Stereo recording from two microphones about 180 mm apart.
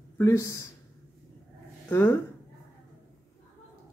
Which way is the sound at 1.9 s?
15° left (ahead or behind).